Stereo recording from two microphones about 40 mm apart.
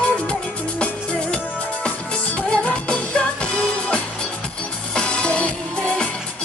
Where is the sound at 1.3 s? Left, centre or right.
Left.